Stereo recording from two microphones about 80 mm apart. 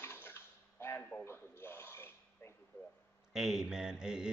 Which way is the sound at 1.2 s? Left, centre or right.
Left.